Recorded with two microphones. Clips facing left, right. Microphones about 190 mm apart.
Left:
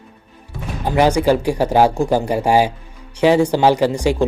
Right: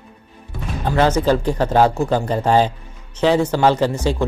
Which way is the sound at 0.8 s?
15° left (ahead or behind).